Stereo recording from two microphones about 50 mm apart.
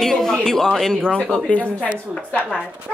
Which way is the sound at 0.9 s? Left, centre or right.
Centre.